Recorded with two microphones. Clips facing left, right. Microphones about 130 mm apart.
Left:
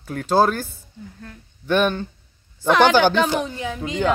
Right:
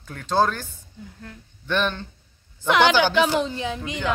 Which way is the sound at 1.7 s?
10° left (ahead or behind).